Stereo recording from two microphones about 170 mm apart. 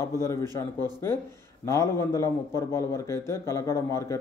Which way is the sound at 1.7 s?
15° left (ahead or behind).